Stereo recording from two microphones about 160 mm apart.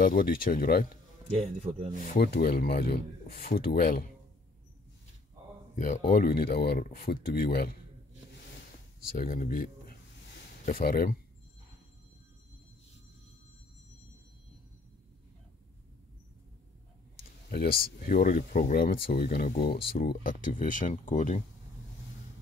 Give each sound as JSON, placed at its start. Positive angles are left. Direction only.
{"t": 0.0, "sound": "speech", "side_deg": 65}
{"t": 1.3, "sound": "a man's voice", "side_deg": -45}
{"t": 2.0, "sound": "speech", "side_deg": 60}
{"t": 5.8, "sound": "speech", "side_deg": 55}
{"t": 9.0, "sound": "speech", "side_deg": 65}
{"t": 17.2, "sound": "a sound", "side_deg": 65}
{"t": 18.0, "sound": "speech", "side_deg": 60}